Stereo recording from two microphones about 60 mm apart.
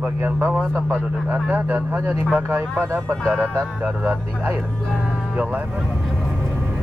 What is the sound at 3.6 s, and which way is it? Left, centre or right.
Speech, right.